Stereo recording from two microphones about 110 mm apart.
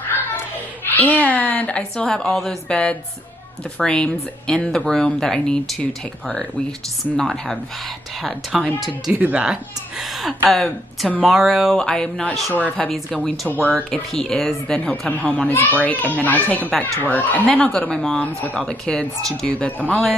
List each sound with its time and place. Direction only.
0.9 s speech: 15° left (ahead or behind)
13.6 s speech: 20° right (ahead or behind)
13.9 s speech: 5° left (ahead or behind)